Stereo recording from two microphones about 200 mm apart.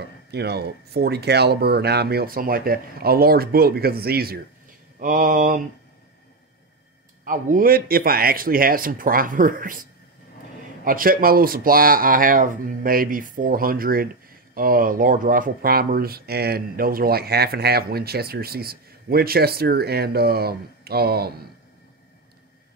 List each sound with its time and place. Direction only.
0.0 s speech: 55° right (ahead or behind)
7.2 s speech: 45° right (ahead or behind)